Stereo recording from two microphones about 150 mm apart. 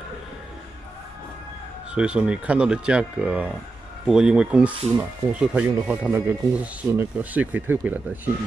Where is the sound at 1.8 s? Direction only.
5° right (ahead or behind).